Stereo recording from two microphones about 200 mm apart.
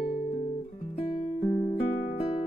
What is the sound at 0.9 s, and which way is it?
Music, 30° left (ahead or behind).